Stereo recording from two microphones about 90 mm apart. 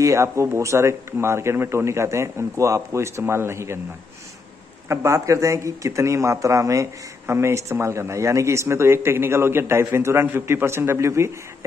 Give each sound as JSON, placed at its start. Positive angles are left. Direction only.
{"t": 0.0, "sound": "speech", "side_deg": -35}
{"t": 4.8, "sound": "a man's voice", "side_deg": -35}